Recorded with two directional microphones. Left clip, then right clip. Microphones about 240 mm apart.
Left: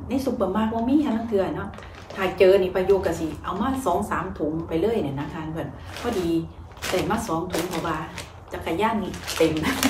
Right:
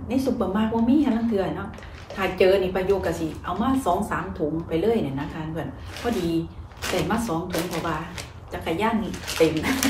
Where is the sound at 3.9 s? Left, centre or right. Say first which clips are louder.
Even; centre.